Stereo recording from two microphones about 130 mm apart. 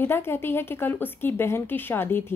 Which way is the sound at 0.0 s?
15° left (ahead or behind).